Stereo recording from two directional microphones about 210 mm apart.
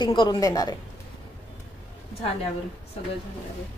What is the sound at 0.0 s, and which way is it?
Speech, 20° left (ahead or behind).